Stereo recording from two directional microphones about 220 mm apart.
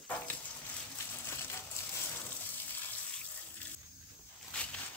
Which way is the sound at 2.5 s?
10° left (ahead or behind).